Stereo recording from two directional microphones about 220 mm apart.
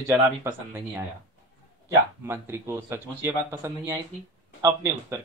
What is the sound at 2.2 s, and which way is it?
A woman's voice, 10° right (ahead or behind).